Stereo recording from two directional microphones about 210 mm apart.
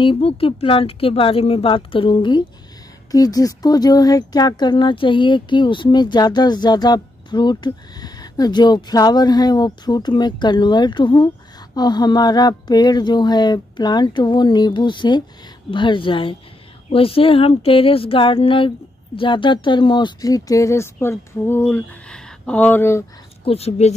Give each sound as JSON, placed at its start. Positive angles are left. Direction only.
{"t": 0.0, "sound": "speech", "side_deg": 25}
{"t": 23.4, "sound": "speech", "side_deg": 30}